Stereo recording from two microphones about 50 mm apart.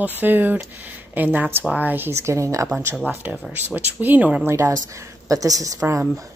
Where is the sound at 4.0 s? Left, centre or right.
Right.